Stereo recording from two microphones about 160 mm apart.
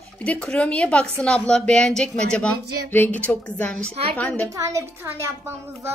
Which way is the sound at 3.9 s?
35° right (ahead or behind).